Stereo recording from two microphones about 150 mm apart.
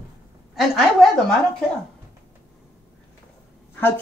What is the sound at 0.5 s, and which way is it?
A woman's voice, centre (ahead or behind).